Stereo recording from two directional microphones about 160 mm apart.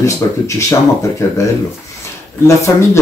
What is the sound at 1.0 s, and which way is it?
Speech, 20° left (ahead or behind).